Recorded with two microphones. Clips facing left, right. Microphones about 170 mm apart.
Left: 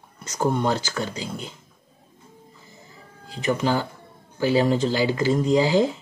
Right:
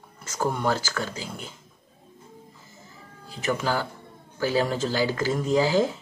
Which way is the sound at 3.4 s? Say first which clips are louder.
Left 3 dB; 15° left (ahead or behind).